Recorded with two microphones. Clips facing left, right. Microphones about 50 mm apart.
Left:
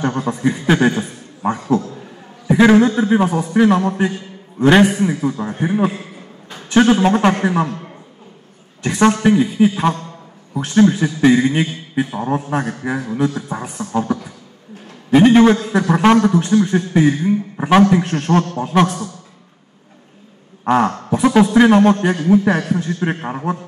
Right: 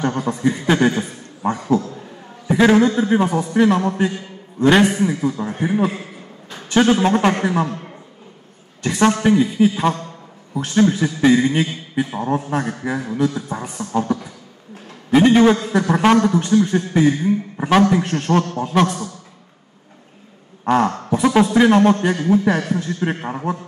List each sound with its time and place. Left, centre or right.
0.0 s a man's voice: centre
2.8 s a man's voice: centre
6.5 s a man's voice: centre
8.8 s a man's voice: centre
20.6 s a man's voice: centre